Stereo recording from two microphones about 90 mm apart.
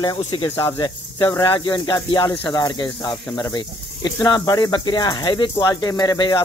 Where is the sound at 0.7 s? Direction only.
60° left (ahead or behind).